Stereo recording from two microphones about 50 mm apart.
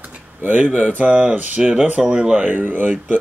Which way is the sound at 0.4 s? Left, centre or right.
Right.